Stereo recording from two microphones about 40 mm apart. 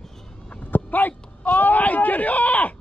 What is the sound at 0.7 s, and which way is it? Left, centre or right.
Dog, left.